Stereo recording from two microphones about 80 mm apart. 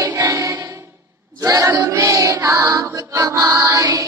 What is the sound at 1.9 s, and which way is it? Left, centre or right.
Music, right.